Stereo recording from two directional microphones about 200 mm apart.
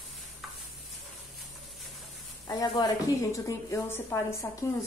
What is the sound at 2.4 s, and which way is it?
A woman's voice, 20° left (ahead or behind).